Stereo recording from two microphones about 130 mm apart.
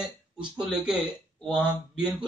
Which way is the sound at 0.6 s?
5° right (ahead or behind).